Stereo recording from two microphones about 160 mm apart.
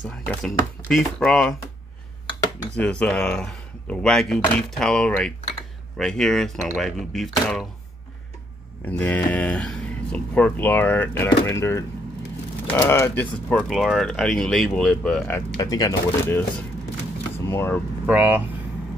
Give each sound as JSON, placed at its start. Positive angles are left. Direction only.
{"t": 0.3, "sound": "speech", "side_deg": 5}
{"t": 2.7, "sound": "speech", "side_deg": 5}
{"t": 8.8, "sound": "speech", "side_deg": 10}
{"t": 15.2, "sound": "speech", "side_deg": 20}
{"t": 17.5, "sound": "speech", "side_deg": 15}
{"t": 18.0, "sound": "speech", "side_deg": -10}